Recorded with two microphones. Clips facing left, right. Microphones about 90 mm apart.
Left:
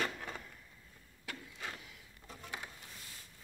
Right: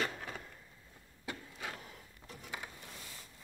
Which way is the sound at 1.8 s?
40° right (ahead or behind).